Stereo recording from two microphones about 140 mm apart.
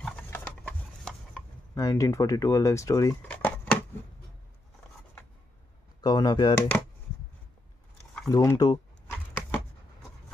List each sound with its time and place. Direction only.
0.0 s wood: 5° left (ahead or behind)
1.8 s speech: 25° left (ahead or behind)
3.3 s a sound: 10° left (ahead or behind)
5.9 s speech: 30° left (ahead or behind)
8.3 s speech: 25° left (ahead or behind)